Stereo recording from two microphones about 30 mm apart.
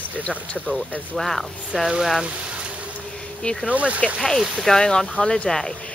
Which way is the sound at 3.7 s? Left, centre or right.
Right.